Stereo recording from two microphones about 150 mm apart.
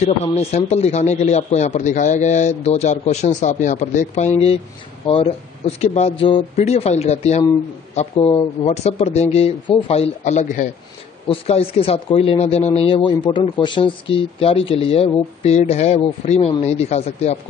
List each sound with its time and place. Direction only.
0.0 s a man's voice: 45° left (ahead or behind)
11.2 s speech: 40° left (ahead or behind)